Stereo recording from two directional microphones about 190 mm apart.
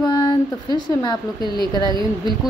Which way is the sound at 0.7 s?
20° left (ahead or behind).